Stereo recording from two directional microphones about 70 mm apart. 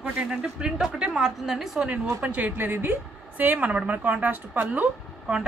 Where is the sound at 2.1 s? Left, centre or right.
Centre.